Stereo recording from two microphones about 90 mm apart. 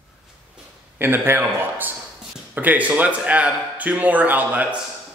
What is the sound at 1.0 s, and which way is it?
A man's voice, 25° right (ahead or behind).